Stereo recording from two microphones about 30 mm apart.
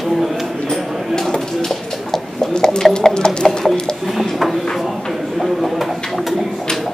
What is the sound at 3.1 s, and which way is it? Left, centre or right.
Music, left.